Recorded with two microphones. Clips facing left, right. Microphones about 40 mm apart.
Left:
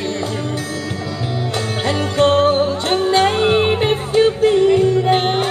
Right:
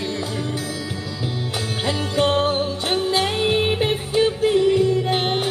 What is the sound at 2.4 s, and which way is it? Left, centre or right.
Music, centre.